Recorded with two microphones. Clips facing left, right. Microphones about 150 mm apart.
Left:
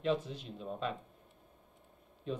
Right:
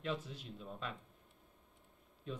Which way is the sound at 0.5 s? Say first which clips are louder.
Left 8 dB; 25° left (ahead or behind).